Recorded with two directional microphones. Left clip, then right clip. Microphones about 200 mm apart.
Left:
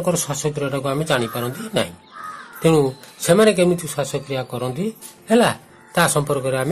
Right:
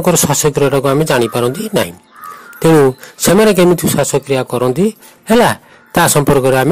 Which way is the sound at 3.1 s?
45° right (ahead or behind).